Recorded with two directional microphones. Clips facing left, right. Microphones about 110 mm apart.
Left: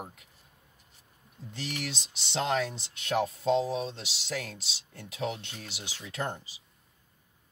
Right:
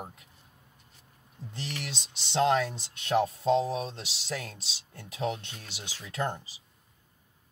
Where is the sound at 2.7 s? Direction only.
35° right (ahead or behind).